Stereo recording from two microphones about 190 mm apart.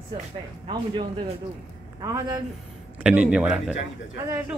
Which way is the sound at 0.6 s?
25° right (ahead or behind).